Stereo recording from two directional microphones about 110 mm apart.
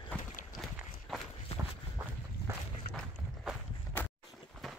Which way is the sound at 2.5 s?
25° right (ahead or behind).